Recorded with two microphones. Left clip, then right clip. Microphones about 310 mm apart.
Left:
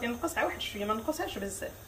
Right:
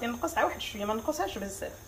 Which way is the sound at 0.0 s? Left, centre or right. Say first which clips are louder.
Right 2 dB; centre.